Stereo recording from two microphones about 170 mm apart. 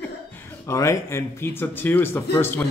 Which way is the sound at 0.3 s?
15° left (ahead or behind).